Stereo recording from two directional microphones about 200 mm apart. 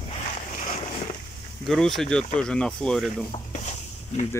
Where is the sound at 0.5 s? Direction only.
35° left (ahead or behind).